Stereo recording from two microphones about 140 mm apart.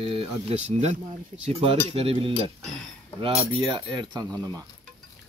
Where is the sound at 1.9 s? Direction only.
45° right (ahead or behind).